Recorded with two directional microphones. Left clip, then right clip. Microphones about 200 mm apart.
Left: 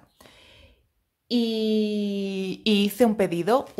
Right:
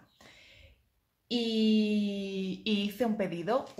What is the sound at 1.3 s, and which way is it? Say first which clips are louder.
Speech: left 5 dB; 40° left (ahead or behind).